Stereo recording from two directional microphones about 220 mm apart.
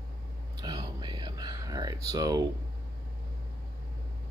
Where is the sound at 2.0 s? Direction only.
15° right (ahead or behind).